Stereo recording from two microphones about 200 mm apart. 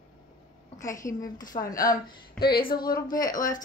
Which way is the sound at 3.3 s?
40° left (ahead or behind).